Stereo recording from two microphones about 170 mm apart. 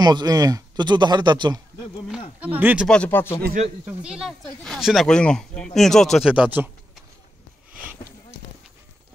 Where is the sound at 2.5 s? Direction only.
10° right (ahead or behind).